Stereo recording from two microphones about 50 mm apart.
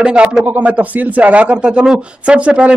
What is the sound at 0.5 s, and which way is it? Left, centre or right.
Speech, right.